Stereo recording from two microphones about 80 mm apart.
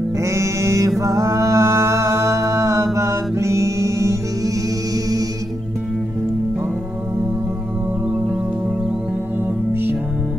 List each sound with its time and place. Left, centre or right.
0.2 s music: right